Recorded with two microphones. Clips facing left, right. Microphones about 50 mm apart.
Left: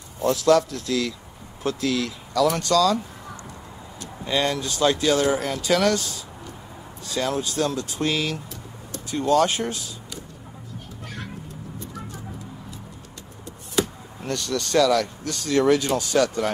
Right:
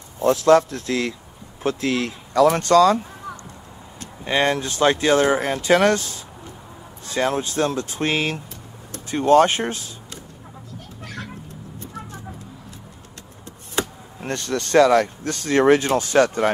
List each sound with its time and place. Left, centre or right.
0.2 s speech: right
4.0 s speech: right
13.7 s speech: right